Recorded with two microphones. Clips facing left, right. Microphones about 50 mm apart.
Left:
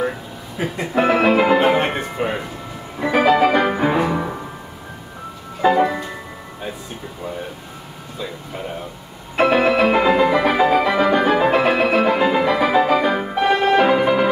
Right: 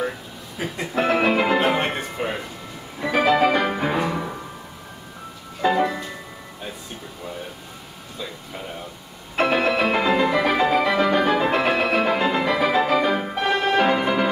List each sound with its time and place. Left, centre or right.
0.6 s speech: centre
3.0 s music: centre
5.6 s music: centre
8.2 s speech: centre
9.4 s music: centre